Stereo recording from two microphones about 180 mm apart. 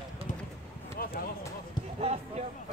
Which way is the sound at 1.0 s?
55° left (ahead or behind).